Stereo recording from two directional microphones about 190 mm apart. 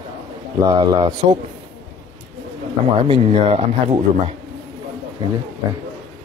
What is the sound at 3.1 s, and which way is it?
Speech, 30° right (ahead or behind).